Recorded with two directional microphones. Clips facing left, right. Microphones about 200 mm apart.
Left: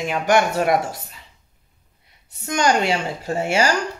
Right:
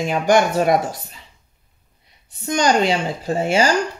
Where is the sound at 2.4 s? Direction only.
20° right (ahead or behind).